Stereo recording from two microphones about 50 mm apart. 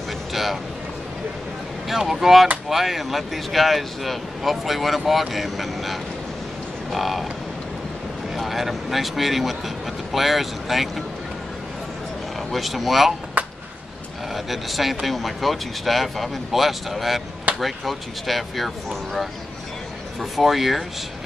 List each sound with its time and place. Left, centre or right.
0.3 s a sound: centre
1.9 s speech: centre
8.4 s speech: centre
12.4 s speech: centre
13.4 s a sound: right
14.3 s speech: centre